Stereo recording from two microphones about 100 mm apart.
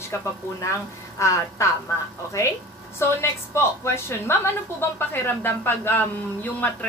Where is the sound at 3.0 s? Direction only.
25° left (ahead or behind).